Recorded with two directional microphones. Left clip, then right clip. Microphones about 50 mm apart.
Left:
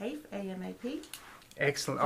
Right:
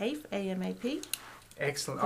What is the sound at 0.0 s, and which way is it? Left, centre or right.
Speech, right.